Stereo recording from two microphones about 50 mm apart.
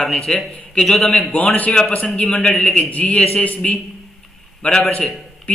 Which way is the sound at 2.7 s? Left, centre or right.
Left.